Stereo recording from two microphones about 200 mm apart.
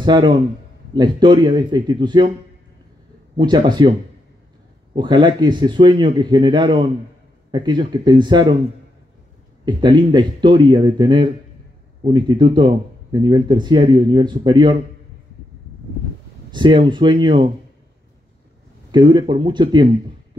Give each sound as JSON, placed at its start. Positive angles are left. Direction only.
{"t": 0.0, "sound": "speech", "side_deg": -20}
{"t": 3.3, "sound": "speech", "side_deg": -20}
{"t": 4.9, "sound": "speech", "side_deg": -20}
{"t": 9.7, "sound": "speech", "side_deg": -20}
{"t": 16.5, "sound": "speech", "side_deg": -25}
{"t": 18.9, "sound": "speech", "side_deg": -20}